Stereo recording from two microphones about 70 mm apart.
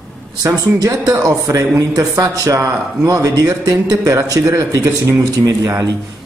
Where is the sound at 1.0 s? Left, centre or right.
Right.